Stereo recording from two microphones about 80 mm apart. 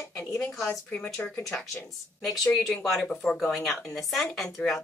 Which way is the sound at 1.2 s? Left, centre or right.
Centre.